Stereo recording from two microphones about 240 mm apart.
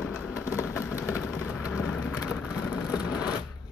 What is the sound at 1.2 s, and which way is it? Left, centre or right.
Vehicle, centre.